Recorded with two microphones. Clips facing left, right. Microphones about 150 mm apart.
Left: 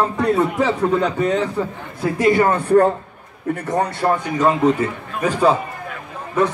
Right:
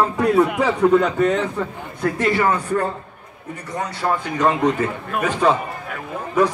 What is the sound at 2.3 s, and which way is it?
Speech, 50° left (ahead or behind).